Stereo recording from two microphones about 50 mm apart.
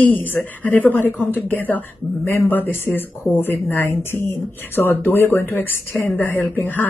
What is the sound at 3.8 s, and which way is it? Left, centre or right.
Speech, left.